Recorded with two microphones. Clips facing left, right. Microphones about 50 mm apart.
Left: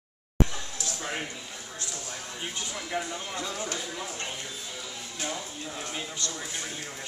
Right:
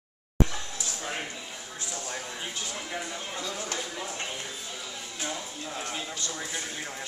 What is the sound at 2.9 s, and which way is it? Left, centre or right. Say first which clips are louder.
Speech: left 2 dB; centre.